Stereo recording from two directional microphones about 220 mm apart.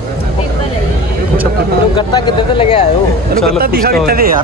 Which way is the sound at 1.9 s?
20° left (ahead or behind).